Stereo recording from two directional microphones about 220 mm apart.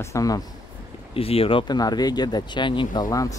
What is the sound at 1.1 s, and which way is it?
Speech, 25° left (ahead or behind).